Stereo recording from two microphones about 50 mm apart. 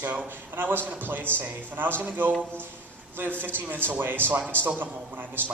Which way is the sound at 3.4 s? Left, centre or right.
Right.